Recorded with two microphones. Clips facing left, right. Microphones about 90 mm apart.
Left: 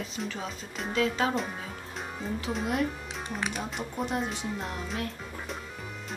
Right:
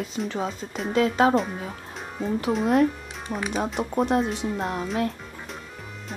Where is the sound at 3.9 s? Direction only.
70° right (ahead or behind).